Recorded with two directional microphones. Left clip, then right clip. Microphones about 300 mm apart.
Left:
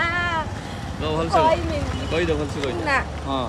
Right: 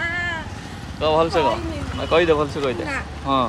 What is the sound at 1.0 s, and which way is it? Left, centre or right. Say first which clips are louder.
Speech: right 2 dB; centre.